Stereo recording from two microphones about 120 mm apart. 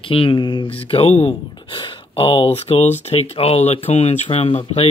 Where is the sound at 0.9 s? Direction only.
60° left (ahead or behind).